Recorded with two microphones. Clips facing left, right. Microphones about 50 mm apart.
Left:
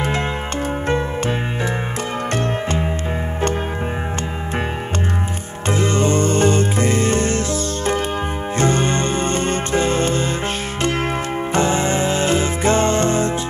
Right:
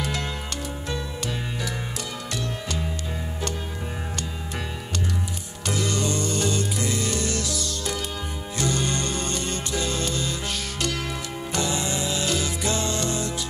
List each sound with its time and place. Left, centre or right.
0.8 s music: left
2.3 s music: left
5.7 s music: left